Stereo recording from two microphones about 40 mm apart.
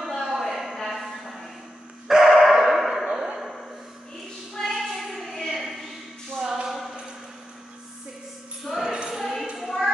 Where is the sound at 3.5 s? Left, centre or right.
Centre.